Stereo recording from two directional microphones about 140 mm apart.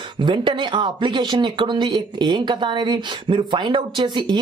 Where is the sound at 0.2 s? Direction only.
35° right (ahead or behind).